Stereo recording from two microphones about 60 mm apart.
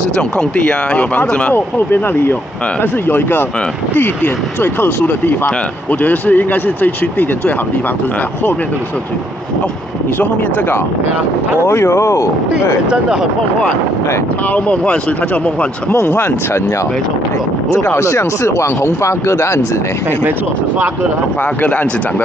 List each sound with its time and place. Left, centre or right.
0.4 s speech: centre
1.5 s speech: left
11.6 s speech: left
14.5 s speech: left
15.9 s speech: left
17.6 s speech: left